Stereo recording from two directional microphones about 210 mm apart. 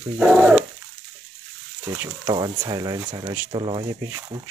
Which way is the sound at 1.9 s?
15° right (ahead or behind).